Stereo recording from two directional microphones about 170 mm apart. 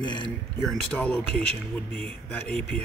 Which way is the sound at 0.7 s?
5° left (ahead or behind).